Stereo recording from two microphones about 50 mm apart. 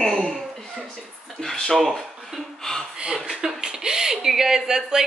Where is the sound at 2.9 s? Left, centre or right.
Centre.